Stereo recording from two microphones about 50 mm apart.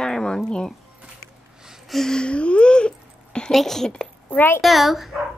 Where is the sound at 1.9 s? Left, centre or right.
Centre.